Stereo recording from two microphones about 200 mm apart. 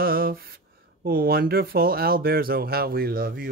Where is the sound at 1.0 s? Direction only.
50° right (ahead or behind).